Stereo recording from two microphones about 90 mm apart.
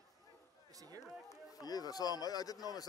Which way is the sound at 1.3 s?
45° left (ahead or behind).